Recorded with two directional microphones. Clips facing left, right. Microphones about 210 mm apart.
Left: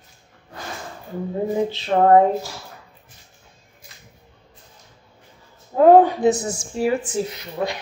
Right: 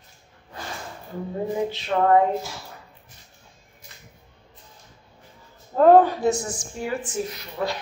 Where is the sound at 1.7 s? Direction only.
35° left (ahead or behind).